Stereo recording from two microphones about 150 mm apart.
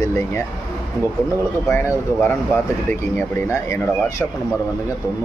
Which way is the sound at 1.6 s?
15° left (ahead or behind).